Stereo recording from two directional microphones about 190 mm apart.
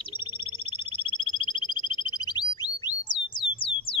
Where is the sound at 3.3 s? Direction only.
25° left (ahead or behind).